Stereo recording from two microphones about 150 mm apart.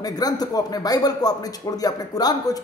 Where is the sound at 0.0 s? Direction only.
25° left (ahead or behind).